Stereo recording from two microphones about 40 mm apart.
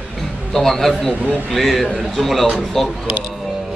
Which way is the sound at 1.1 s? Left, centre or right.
Right.